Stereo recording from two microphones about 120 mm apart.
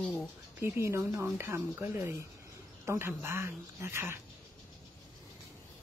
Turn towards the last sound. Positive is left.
turn(degrees=-20)  # may be behind; listen again after turning